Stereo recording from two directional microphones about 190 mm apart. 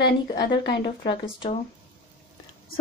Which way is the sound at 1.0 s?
25° left (ahead or behind).